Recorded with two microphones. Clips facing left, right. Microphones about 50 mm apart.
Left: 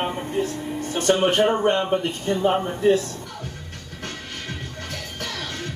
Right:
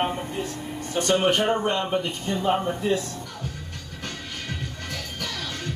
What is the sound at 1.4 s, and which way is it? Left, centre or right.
Speech, left.